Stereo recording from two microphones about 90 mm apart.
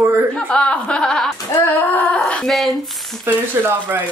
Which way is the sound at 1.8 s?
20° left (ahead or behind).